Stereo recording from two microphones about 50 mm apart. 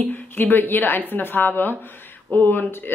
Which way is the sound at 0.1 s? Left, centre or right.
Left.